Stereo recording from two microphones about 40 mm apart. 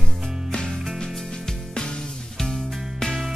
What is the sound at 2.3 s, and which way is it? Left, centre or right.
Music, centre.